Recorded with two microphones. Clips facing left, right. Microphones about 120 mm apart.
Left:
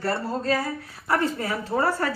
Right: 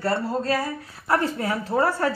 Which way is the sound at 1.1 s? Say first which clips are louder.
Right 1 dB; 15° right (ahead or behind).